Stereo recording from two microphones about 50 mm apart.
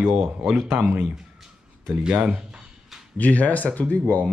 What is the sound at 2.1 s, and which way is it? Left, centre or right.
Speech, right.